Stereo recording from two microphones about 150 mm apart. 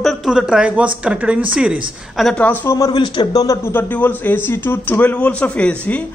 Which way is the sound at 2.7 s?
25° left (ahead or behind).